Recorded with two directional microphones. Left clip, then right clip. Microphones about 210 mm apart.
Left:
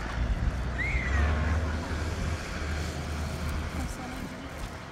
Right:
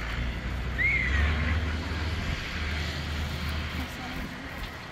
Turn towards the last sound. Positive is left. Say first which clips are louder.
# right 2 dB
turn(degrees=50)  # may be behind; listen again after turning